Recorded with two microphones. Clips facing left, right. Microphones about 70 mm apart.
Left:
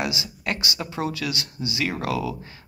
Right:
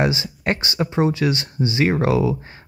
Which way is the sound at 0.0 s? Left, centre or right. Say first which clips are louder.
Right 7 dB; right.